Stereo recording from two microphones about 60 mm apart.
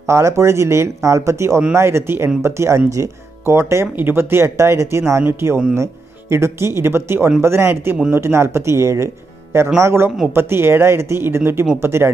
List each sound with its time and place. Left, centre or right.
0.0 s speech: right
3.9 s speech: right